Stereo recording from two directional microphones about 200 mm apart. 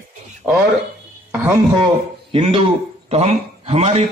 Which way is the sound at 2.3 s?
30° right (ahead or behind).